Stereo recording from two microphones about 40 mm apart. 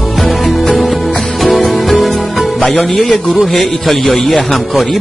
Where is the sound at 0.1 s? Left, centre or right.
Centre.